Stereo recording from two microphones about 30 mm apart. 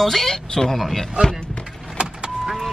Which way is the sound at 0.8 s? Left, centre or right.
Centre.